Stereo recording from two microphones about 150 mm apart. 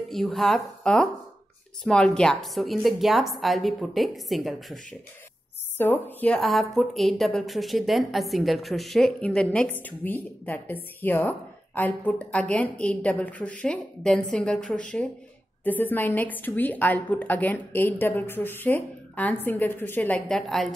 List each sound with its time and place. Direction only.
0.1 s a woman's voice: centre (ahead or behind)
5.8 s a woman's voice: 10° left (ahead or behind)